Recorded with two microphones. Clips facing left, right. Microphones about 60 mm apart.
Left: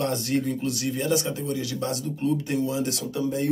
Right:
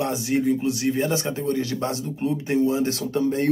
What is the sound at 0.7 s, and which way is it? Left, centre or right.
Speech, right.